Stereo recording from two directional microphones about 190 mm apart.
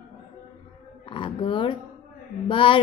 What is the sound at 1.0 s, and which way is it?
A woman's voice, 25° left (ahead or behind).